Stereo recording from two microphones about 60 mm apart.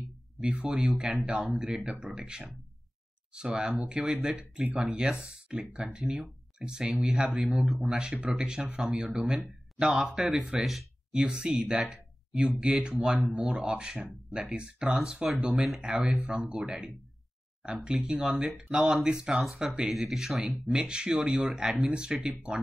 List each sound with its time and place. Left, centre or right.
0.4 s speech: centre
7.6 s speech: centre
7.9 s speech: centre
11.1 s speech: centre
15.3 s speech: right
20.1 s speech: centre